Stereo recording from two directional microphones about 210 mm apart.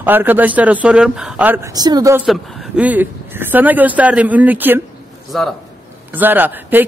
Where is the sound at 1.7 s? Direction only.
20° right (ahead or behind).